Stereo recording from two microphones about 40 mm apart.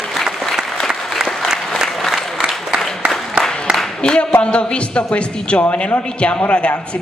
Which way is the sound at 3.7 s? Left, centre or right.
Right.